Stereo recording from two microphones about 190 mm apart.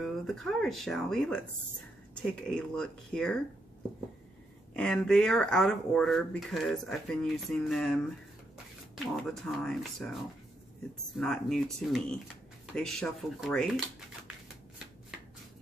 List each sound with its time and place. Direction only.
0.0 s speech: centre (ahead or behind)
4.7 s speech: 5° left (ahead or behind)
9.1 s speech: centre (ahead or behind)
11.1 s speech: 5° left (ahead or behind)